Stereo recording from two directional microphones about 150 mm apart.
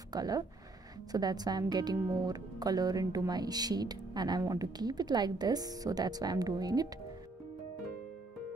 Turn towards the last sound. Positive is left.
turn(degrees=-25)  # may be behind; listen again after turning